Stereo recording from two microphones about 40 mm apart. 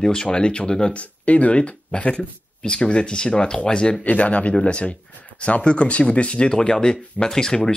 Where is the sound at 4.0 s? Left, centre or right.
Left; by 7.7 s centre.